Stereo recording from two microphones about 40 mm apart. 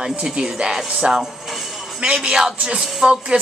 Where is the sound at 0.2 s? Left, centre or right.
Centre.